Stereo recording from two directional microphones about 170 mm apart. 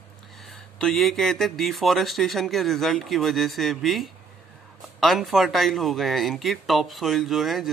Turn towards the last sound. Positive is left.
turn(degrees=0)  # may be behind; listen again after turning